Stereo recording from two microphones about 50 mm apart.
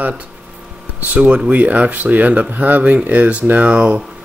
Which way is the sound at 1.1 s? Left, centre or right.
Right.